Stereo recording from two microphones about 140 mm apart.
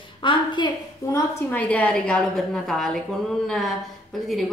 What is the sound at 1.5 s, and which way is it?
A woman's voice, 10° left (ahead or behind).